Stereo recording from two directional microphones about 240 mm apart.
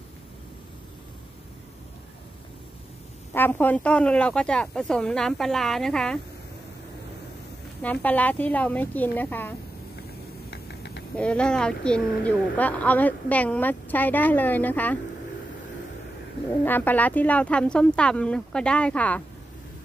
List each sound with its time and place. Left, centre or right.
3.3 s speech: centre
7.8 s speech: centre
10.5 s a sound: left
11.1 s speech: centre
16.6 s speech: centre